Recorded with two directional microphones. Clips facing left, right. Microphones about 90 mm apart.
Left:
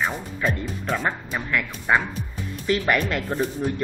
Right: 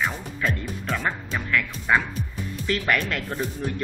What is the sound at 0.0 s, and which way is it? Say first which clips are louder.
Speech: left 2 dB; 15° left (ahead or behind).